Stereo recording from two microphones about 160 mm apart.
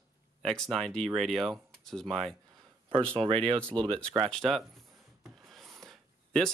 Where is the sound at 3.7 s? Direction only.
35° right (ahead or behind).